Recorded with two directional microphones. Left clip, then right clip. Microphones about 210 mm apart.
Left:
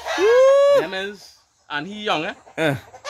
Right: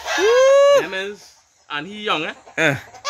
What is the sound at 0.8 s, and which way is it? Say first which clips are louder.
Speech: right 1 dB; 55° left (ahead or behind).